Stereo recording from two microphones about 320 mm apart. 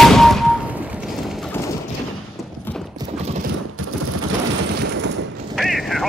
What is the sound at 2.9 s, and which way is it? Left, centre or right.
Mechanisms, right.